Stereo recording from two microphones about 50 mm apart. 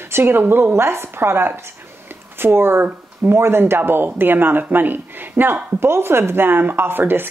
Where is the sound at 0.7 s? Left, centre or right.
Right.